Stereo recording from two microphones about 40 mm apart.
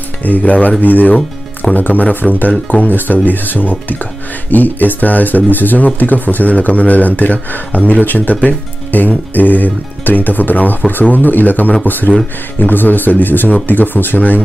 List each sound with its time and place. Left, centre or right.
0.2 s speech: left